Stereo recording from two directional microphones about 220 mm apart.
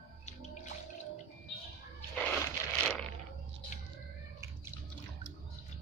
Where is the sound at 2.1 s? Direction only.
5° left (ahead or behind).